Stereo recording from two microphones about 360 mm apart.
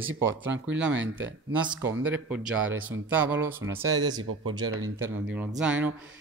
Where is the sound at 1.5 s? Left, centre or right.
Centre.